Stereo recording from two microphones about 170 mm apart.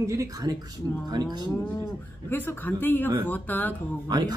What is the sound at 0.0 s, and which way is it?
Speech, 20° right (ahead or behind).